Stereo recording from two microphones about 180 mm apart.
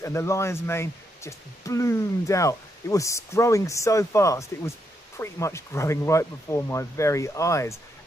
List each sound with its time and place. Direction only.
0.0 s speech: 15° left (ahead or behind)